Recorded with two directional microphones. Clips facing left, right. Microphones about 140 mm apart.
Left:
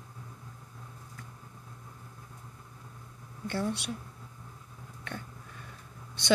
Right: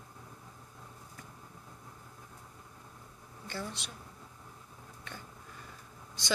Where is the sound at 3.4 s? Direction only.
60° left (ahead or behind).